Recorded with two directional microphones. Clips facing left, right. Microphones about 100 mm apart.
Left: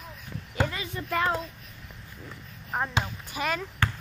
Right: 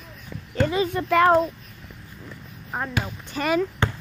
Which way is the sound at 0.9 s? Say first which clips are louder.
Right 10 dB; 70° right (ahead or behind).